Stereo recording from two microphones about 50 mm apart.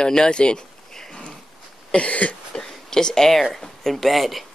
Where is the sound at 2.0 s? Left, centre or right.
Left.